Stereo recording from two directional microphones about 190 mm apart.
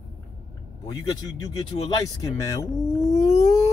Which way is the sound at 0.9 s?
20° left (ahead or behind).